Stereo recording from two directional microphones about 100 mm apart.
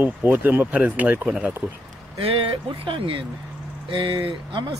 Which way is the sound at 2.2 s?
65° right (ahead or behind).